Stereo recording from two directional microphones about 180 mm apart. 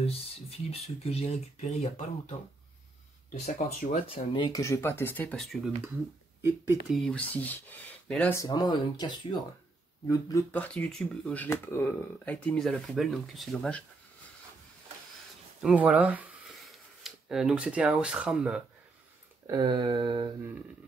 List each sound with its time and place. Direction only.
0.0 s speech: 35° left (ahead or behind)
3.4 s speech: 45° left (ahead or behind)
4.1 s speech: 25° left (ahead or behind); by 5.7 s centre (ahead or behind)
6.9 s speech: 5° left (ahead or behind)
8.4 s speech: 20° left (ahead or behind)
10.5 s speech: 5° left (ahead or behind)
15.6 s speech: 5° right (ahead or behind)
19.4 s a sound: 20° right (ahead or behind)